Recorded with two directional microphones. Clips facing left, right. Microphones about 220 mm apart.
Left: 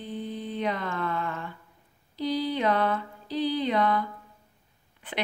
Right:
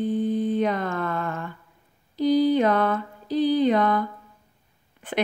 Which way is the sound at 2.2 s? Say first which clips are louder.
Right 9 dB; 45° right (ahead or behind).